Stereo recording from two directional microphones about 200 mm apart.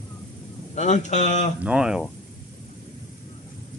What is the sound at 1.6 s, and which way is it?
Speech, 5° right (ahead or behind).